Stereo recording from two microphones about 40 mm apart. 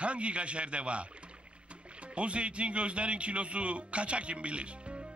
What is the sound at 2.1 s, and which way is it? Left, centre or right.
A man's voice, right.